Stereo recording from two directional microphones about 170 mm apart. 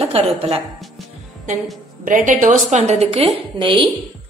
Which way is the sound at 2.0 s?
50° right (ahead or behind).